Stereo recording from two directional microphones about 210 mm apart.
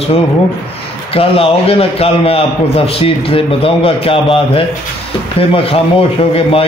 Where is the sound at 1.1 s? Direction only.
25° left (ahead or behind).